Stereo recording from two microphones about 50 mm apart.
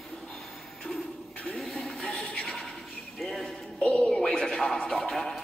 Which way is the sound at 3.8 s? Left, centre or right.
Centre.